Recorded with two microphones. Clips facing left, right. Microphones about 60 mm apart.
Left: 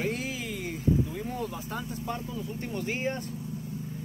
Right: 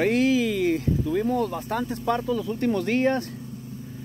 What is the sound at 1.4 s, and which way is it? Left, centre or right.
Speech, right.